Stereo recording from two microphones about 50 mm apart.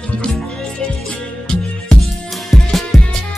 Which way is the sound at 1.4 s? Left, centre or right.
Centre.